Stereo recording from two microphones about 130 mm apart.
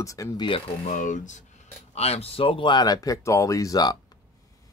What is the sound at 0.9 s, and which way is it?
Speech, 80° left.